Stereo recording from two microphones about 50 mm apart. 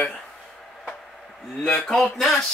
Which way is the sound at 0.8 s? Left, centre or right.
Centre.